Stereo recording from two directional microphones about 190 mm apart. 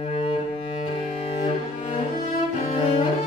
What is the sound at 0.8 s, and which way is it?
Cello, 30° left (ahead or behind).